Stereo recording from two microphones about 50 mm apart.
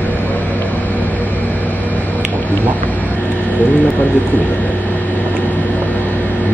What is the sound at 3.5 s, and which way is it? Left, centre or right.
Speech, left.